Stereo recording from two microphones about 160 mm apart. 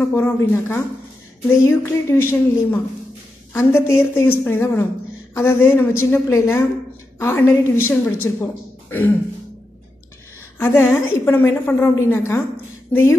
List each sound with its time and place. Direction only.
0.1 s a woman's voice: 15° left (ahead or behind)
10.6 s a woman's voice: 15° left (ahead or behind)